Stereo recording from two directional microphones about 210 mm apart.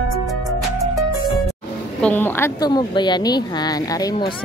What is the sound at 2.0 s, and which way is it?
A woman's voice, 10° left (ahead or behind).